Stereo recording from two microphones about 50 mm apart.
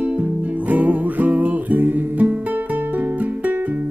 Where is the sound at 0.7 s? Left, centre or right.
Right.